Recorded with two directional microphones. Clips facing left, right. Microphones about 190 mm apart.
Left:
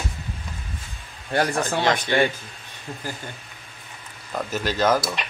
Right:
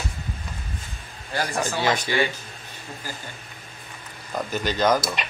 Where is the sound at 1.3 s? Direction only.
60° left (ahead or behind).